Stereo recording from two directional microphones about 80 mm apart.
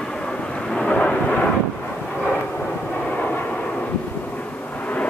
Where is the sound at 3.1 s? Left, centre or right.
Centre.